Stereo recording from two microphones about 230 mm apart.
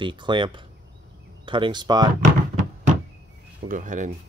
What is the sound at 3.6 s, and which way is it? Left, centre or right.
Speech, right.